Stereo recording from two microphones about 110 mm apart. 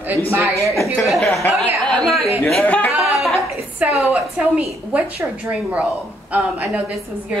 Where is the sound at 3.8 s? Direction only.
15° right (ahead or behind).